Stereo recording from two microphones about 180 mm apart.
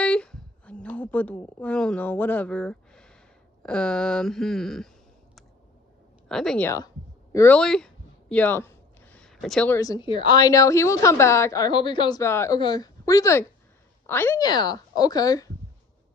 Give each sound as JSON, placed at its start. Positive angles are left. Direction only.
{"t": 0.0, "sound": "a sound", "side_deg": 5}
{"t": 3.6, "sound": "speech", "side_deg": 5}
{"t": 6.2, "sound": "speech", "side_deg": 5}
{"t": 7.3, "sound": "a sound", "side_deg": 10}
{"t": 9.8, "sound": "a woman's voice", "side_deg": 25}
{"t": 12.2, "sound": "a woman's voice", "side_deg": 15}